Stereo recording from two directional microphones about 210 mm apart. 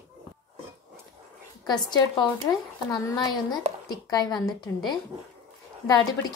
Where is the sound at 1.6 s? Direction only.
20° left (ahead or behind).